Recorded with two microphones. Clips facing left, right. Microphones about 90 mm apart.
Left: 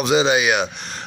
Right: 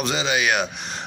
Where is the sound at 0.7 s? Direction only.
15° right (ahead or behind).